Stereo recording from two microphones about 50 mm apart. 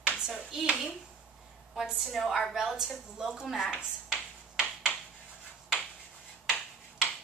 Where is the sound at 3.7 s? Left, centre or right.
Right.